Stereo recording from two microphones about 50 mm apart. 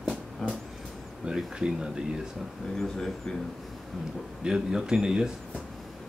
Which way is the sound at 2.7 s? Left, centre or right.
Centre.